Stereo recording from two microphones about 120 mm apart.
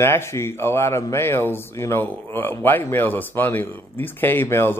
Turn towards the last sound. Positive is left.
turn(degrees=20)  # may be behind; listen again after turning